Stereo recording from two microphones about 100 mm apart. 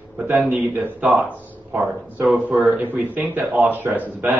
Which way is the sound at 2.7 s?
20° right (ahead or behind).